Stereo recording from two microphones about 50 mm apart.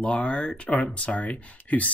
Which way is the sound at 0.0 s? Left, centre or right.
Left.